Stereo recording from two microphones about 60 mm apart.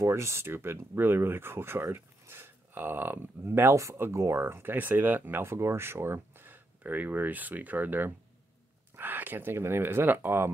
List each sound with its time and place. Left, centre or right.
0.0 s speech: right
4.4 s speech: right
5.4 s speech: right